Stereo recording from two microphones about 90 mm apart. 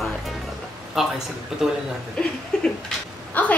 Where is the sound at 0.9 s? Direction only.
5° right (ahead or behind).